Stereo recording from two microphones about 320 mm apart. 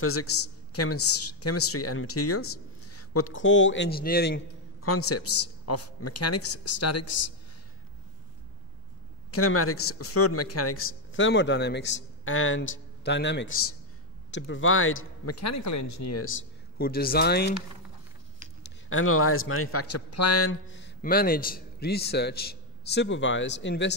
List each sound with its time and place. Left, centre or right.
0.0 s a woman's voice: left
9.3 s a man's voice: left
18.9 s a man's voice: left